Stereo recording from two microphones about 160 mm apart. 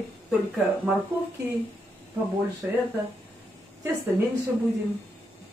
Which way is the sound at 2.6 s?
10° right (ahead or behind).